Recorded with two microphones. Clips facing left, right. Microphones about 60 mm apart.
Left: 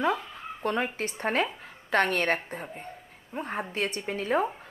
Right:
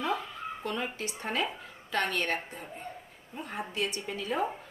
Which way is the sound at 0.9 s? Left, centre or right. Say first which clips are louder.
Left 5 dB; left.